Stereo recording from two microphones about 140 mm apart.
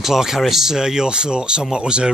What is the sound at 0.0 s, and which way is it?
Speech, 5° right (ahead or behind).